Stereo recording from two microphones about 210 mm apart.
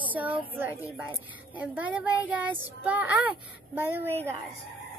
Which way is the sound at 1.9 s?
5° right (ahead or behind).